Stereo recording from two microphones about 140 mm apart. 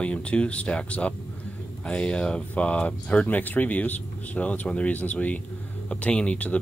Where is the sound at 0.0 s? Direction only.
10° left (ahead or behind).